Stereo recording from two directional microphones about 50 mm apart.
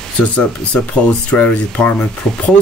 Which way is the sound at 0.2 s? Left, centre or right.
Left.